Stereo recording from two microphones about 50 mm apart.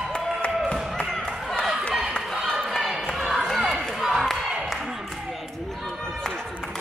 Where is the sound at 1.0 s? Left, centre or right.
Centre.